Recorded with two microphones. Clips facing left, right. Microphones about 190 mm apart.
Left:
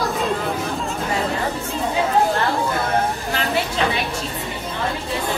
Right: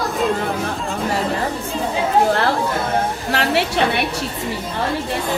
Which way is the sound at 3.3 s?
70° right (ahead or behind).